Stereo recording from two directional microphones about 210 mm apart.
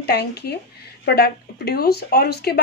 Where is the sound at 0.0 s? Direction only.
50° left (ahead or behind).